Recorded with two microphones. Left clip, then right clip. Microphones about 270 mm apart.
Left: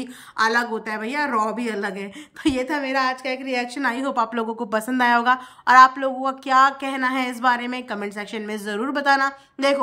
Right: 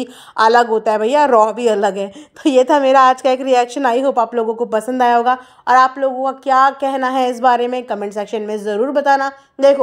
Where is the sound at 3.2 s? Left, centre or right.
Right.